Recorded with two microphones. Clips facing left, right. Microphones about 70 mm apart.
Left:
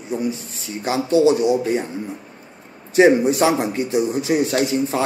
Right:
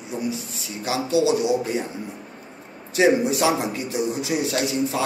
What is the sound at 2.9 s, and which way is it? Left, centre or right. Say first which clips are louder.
A man's voice: left 5 dB; left.